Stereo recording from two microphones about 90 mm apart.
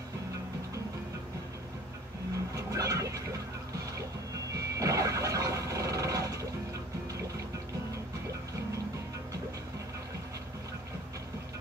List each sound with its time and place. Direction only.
2.5 s vehicle: 35° right (ahead or behind)
4.6 s vehicle: 35° right (ahead or behind)